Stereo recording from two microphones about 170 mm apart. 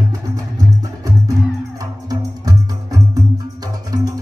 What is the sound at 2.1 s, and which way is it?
Music, 20° right (ahead or behind).